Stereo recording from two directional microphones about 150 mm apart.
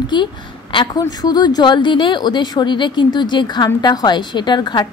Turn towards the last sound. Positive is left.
turn(degrees=30)  # may be behind; listen again after turning